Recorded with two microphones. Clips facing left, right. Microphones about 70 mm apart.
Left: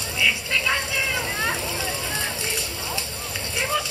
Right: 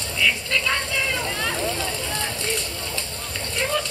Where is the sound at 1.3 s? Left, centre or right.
Centre.